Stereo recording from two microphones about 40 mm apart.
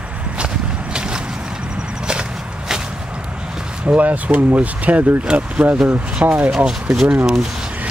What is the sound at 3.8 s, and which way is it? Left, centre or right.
Speech, right.